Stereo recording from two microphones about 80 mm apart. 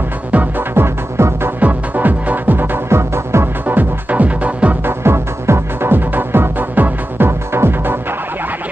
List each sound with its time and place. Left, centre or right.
0.3 s music: right
1.6 s music: right
3.6 s music: right
5.0 s music: right